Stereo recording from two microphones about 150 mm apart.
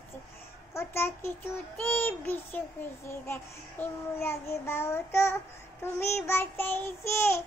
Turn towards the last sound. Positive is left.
turn(degrees=15)  # may be behind; listen again after turning